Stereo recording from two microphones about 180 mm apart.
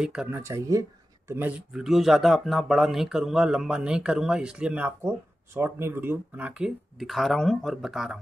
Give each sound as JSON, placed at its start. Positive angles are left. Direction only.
{"t": 0.0, "sound": "speech", "side_deg": -5}
{"t": 0.4, "sound": "speech", "side_deg": -15}
{"t": 1.7, "sound": "speech", "side_deg": 0}